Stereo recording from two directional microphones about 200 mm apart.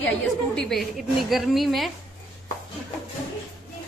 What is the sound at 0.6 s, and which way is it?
A woman's voice, centre (ahead or behind).